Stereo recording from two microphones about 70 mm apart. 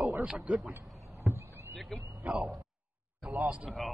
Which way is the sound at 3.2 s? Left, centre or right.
Right.